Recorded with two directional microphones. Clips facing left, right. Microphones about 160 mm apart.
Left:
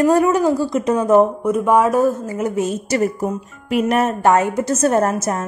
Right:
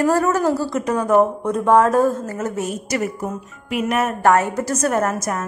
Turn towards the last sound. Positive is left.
turn(degrees=30)  # may be behind; listen again after turning